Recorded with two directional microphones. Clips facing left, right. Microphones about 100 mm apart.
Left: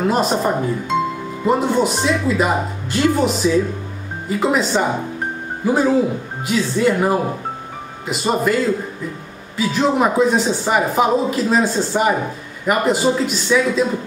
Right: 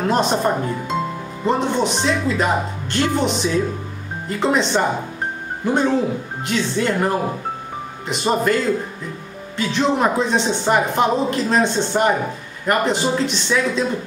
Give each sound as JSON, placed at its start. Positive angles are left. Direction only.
{"t": 0.0, "sound": "speech", "side_deg": 5}
{"t": 9.6, "sound": "speech", "side_deg": 5}